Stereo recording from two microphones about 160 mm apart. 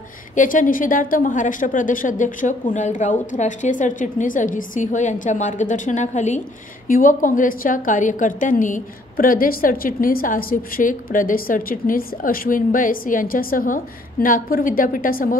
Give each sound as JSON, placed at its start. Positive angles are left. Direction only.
{"t": 0.4, "sound": "a woman's voice", "side_deg": 55}